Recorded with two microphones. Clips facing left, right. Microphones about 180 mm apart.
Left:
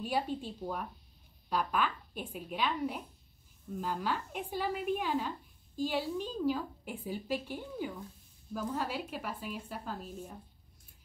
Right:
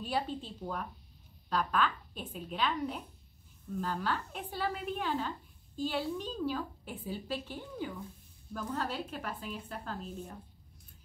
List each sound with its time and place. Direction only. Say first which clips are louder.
0.0 s a woman's voice: left 1 dB; 10° left (ahead or behind)